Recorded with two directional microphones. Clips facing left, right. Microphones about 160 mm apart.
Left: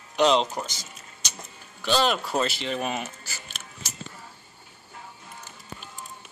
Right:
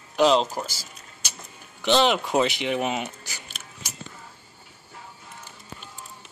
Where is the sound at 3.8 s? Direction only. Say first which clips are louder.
Right 1 dB; 15° right (ahead or behind).